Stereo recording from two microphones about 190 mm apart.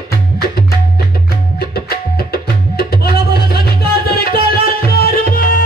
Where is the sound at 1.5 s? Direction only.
55° left (ahead or behind).